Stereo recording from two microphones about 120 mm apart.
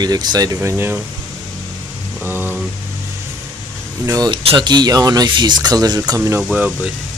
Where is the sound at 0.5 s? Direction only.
20° right (ahead or behind).